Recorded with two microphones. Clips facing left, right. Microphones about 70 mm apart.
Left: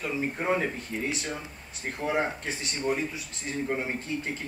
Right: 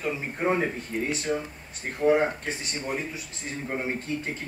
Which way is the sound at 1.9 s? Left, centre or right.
Right.